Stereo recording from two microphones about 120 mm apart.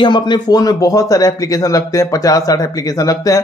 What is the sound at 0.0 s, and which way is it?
Speech, 40° left (ahead or behind).